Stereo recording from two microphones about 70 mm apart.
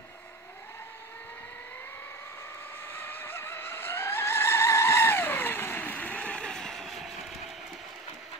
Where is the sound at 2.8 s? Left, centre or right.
Left; by 7.5 s centre.